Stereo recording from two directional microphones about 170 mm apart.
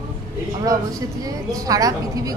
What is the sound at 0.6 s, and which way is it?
Speech, 20° right (ahead or behind).